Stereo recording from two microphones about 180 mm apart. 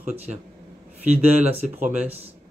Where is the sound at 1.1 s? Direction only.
35° right (ahead or behind).